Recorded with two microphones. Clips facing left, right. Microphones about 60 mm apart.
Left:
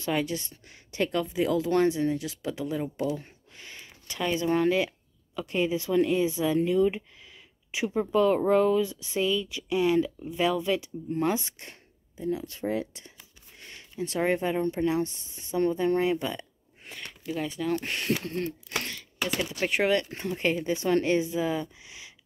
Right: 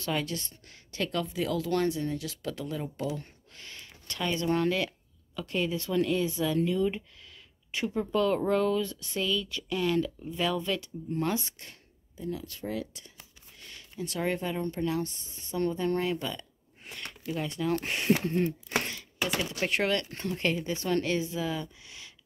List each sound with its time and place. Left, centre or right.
0.0 s speech: centre
16.8 s a sound: centre
17.3 s speech: centre
18.1 s speech: centre
18.8 s typing: centre
19.2 s speech: centre
19.9 s speech: centre